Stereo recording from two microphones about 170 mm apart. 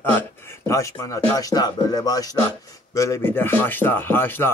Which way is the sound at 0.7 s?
20° left (ahead or behind).